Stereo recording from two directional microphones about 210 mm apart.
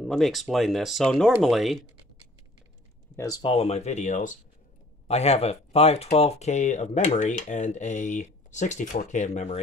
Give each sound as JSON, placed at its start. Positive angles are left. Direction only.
{"t": 0.0, "sound": "speech", "side_deg": 0}
{"t": 3.2, "sound": "speech", "side_deg": 20}